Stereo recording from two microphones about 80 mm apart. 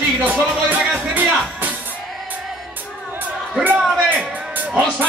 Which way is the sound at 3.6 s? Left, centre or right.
Right.